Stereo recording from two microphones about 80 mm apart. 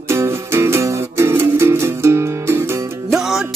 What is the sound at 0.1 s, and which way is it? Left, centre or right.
Music, right.